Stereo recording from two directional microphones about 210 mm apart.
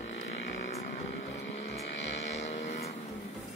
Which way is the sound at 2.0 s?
60° left (ahead or behind).